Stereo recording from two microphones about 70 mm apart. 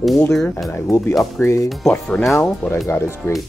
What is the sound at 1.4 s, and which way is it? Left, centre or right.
Speech, left.